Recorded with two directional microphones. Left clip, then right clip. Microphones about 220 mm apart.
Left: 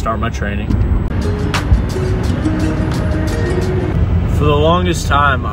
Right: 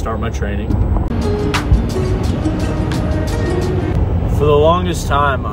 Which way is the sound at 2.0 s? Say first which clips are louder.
Left 1 dB; centre (ahead or behind).